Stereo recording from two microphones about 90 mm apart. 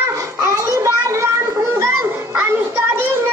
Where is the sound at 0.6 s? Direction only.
35° right (ahead or behind).